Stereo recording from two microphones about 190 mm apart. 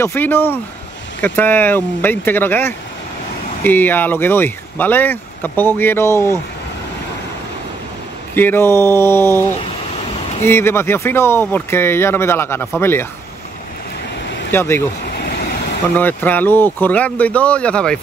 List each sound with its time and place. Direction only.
0.0 s speech: 10° left (ahead or behind)
8.4 s speech: 10° left (ahead or behind)
14.5 s speech: 10° left (ahead or behind)
15.0 s vehicle: 55° left (ahead or behind)
16.0 s speech: 10° left (ahead or behind)